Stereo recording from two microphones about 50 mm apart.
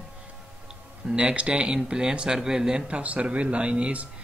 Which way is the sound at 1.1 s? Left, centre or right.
Right.